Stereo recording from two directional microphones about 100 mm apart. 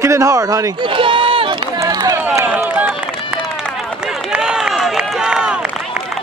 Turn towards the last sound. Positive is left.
turn(degrees=-10)  # may be behind; listen again after turning